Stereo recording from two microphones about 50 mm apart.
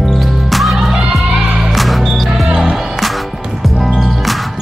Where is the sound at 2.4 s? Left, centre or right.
Centre.